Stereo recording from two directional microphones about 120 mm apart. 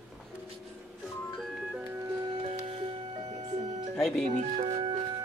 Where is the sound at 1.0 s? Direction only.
10° left (ahead or behind); by 1.9 s 5° right (ahead or behind).